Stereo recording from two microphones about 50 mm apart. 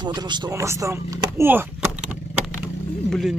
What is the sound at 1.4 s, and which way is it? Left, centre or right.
Speech, right.